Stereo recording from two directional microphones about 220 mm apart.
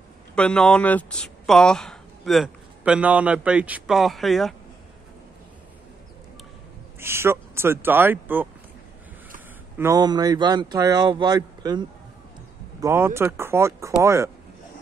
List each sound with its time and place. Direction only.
0.4 s speech: 5° left (ahead or behind)
7.0 s speech: 10° right (ahead or behind)
9.8 s speech: 15° right (ahead or behind)
12.8 s speech: 10° right (ahead or behind)